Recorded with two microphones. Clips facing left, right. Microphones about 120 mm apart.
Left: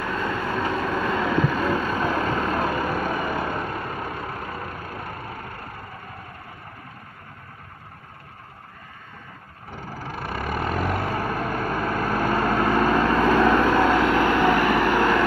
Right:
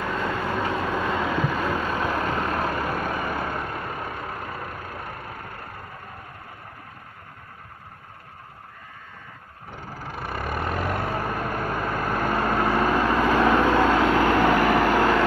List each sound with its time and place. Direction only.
0.0 s vehicle: 10° right (ahead or behind)
1.7 s boat: 5° right (ahead or behind)
2.6 s vehicle: 5° left (ahead or behind)
10.1 s vehicle: centre (ahead or behind)
14.0 s vehicle: 30° right (ahead or behind)